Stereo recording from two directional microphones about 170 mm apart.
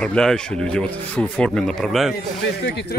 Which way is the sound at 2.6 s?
85° left.